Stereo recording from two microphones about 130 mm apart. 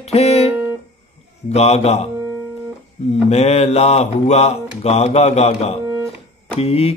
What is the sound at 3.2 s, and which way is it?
Speech, 55° left (ahead or behind).